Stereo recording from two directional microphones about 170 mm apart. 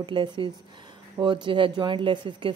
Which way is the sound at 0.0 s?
30° right (ahead or behind).